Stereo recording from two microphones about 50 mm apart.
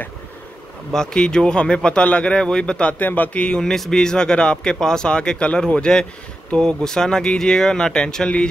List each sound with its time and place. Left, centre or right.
0.9 s speech: centre
3.0 s speech: left
3.4 s speech: centre